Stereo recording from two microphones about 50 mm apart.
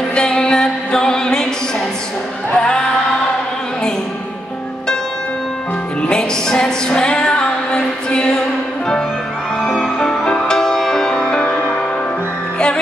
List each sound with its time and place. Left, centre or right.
0.1 s music: centre
2.5 s music: centre
6.0 s music: centre
10.0 s music: centre